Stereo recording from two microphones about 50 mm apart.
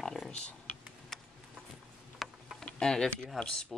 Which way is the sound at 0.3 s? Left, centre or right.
Left.